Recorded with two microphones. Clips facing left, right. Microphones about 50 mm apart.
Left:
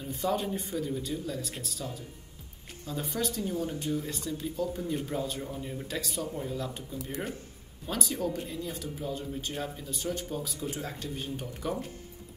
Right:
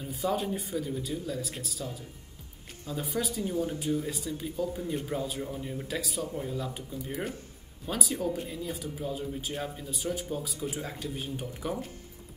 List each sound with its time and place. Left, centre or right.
0.0 s speech: centre